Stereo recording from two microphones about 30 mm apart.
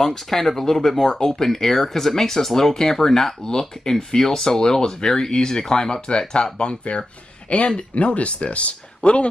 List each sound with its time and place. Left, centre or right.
0.0 s speech: centre; by 6.8 s left
7.4 s speech: left